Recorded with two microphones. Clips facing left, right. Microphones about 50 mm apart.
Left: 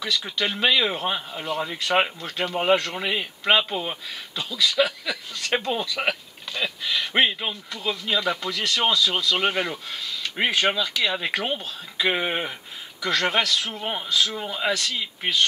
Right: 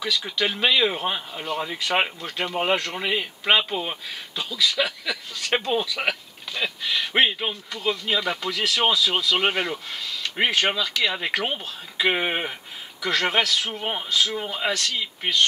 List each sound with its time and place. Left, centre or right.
0.0 s speech: centre
7.2 s speech: centre
7.7 s speech: centre
11.3 s speech: centre
14.4 s speech: centre
14.7 s speech: centre